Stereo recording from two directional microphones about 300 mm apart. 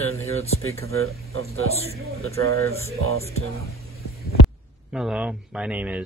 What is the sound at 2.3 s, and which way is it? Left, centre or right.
Speech, centre.